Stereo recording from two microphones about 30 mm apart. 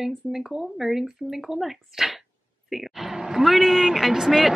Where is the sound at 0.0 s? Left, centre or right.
Centre.